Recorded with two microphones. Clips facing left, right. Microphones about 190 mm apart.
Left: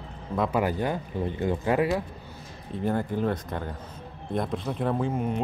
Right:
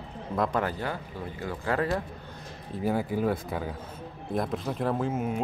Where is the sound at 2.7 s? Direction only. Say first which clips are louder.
Left 1 dB; 5° right (ahead or behind).